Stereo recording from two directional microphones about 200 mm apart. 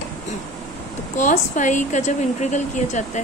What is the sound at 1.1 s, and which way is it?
A woman's voice, 40° left (ahead or behind).